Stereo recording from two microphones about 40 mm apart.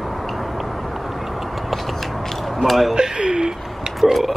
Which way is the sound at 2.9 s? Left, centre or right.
Right.